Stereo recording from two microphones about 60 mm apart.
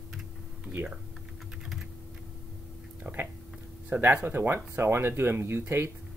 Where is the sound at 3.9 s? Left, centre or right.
Right.